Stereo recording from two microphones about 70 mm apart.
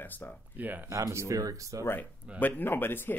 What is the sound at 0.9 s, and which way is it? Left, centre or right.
Speech, right.